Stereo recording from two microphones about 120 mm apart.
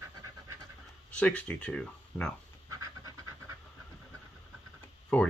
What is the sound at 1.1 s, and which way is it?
Speech, 10° left (ahead or behind).